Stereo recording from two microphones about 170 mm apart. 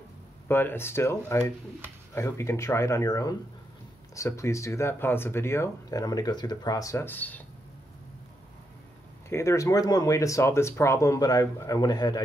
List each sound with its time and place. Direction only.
0.5 s speech: 10° left (ahead or behind)
9.3 s speech: 15° left (ahead or behind)